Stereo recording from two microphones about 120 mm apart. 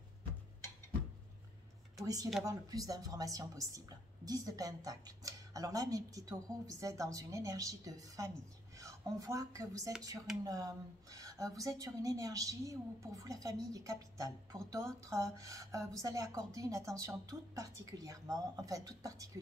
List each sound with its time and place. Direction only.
2.4 s a woman's voice: 30° right (ahead or behind)